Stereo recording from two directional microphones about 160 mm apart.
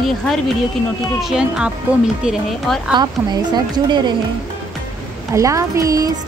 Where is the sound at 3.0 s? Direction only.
25° right (ahead or behind).